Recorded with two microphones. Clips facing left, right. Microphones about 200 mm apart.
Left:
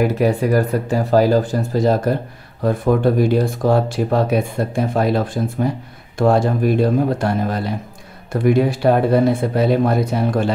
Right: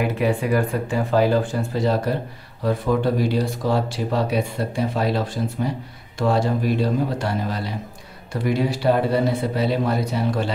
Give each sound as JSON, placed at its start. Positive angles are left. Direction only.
{"t": 0.0, "sound": "speech", "side_deg": 40}